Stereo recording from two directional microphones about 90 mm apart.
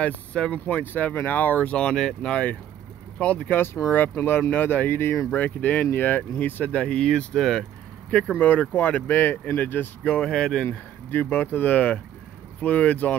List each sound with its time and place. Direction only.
0.0 s speech: 15° left (ahead or behind); by 5.3 s 30° left (ahead or behind)
5.3 s speech: 15° left (ahead or behind)
10.0 s speech: 10° left (ahead or behind)